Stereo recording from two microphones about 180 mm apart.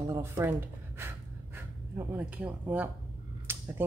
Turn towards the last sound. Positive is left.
turn(degrees=-10)  # may be behind; listen again after turning